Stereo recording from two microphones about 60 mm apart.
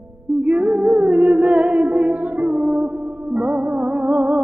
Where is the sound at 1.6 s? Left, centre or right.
Right.